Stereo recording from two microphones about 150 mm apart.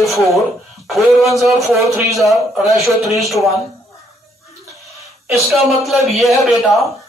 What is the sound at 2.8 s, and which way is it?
Speech, 20° right (ahead or behind).